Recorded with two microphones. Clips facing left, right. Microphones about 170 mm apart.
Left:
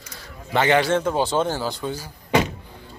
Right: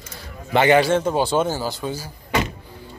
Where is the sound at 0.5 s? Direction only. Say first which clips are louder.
Right 3 dB; 10° right (ahead or behind).